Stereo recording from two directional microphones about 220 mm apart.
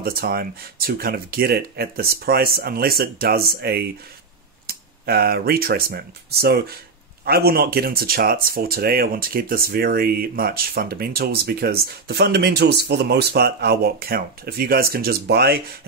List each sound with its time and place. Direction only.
0.0 s speech: 45° right (ahead or behind)